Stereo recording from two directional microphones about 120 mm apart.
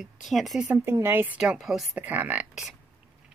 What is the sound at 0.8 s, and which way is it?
Speech, 20° right (ahead or behind).